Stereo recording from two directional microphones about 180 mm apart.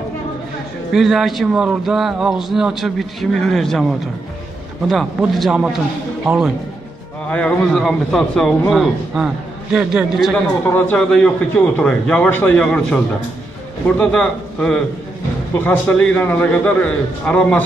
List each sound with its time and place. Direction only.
0.9 s a man's voice: centre (ahead or behind)
4.8 s a man's voice: centre (ahead or behind)
7.2 s a man's voice: 5° left (ahead or behind)
10.3 s a man's voice: 10° left (ahead or behind)